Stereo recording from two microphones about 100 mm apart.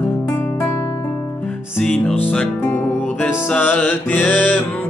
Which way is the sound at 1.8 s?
5° left (ahead or behind).